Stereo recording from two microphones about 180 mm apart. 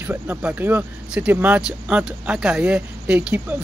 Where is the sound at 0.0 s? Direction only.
10° right (ahead or behind).